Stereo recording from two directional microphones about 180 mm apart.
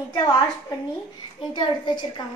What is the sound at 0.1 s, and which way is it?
A child's voice, 25° left (ahead or behind).